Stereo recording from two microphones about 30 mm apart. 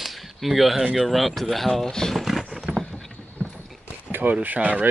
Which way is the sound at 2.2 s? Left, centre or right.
Centre.